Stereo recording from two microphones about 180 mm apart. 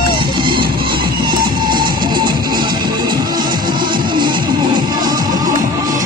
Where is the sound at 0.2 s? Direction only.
25° right (ahead or behind).